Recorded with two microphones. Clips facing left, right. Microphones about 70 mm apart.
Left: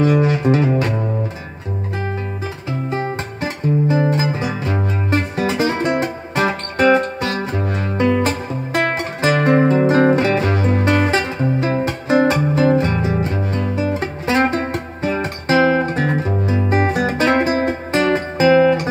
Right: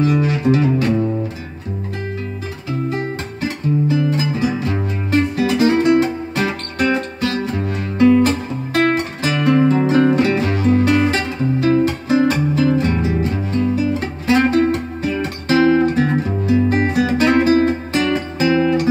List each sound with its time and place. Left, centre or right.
0.0 s music: left
2.9 s music: left